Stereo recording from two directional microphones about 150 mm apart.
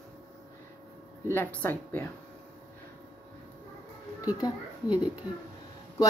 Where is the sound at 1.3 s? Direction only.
15° left (ahead or behind).